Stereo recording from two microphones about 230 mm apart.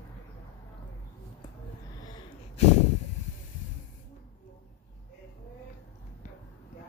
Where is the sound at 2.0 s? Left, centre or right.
Centre.